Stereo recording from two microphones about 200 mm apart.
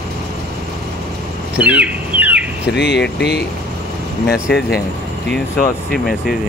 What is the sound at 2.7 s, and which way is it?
Speech, 55° left (ahead or behind).